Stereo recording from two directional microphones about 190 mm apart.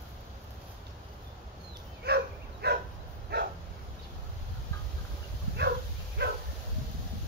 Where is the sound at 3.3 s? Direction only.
60° right (ahead or behind).